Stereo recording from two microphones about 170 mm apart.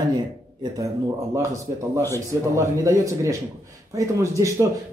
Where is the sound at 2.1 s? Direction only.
20° right (ahead or behind).